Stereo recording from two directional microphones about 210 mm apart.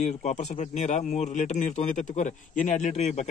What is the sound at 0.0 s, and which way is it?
Speech, 35° left (ahead or behind).